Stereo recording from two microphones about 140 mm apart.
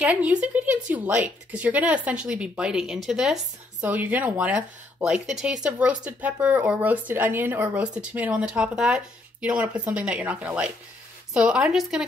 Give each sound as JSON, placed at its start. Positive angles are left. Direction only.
{"t": 0.0, "sound": "speech", "side_deg": -10}